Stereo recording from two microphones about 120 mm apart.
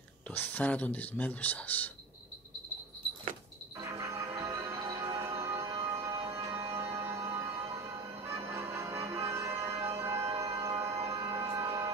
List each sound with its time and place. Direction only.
0.3 s speech: 15° left (ahead or behind)
4.0 s music: 25° right (ahead or behind)